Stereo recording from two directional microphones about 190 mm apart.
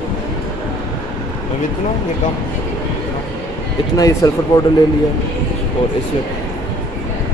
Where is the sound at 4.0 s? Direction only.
20° left (ahead or behind).